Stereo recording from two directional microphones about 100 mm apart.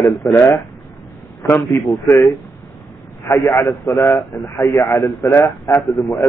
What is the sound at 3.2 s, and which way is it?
Speech, 35° left (ahead or behind).